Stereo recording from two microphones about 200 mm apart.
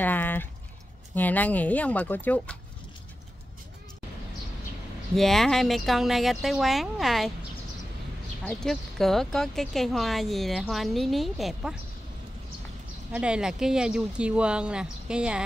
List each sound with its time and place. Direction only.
0.0 s speech: 10° left (ahead or behind)
5.1 s speech: centre (ahead or behind)
8.5 s speech: centre (ahead or behind)
13.1 s speech: 5° right (ahead or behind)